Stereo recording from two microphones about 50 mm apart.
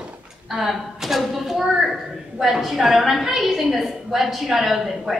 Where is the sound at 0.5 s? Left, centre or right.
Centre.